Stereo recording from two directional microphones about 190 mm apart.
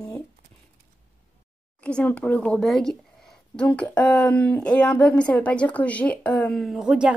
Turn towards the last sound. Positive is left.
turn(degrees=-5)  # may be behind; listen again after turning